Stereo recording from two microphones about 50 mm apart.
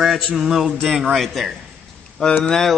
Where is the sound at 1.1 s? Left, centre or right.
Centre.